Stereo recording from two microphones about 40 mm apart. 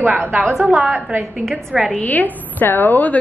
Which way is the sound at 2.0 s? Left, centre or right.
Left.